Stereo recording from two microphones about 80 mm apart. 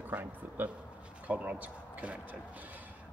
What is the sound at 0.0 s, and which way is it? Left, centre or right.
Speech, right.